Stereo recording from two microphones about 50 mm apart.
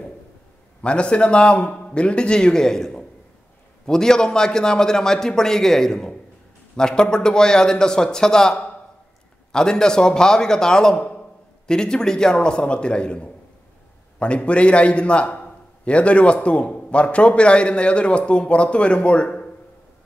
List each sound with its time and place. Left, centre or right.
0.8 s a man's voice: centre